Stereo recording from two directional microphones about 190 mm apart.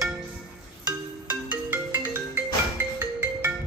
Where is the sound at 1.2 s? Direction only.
10° right (ahead or behind).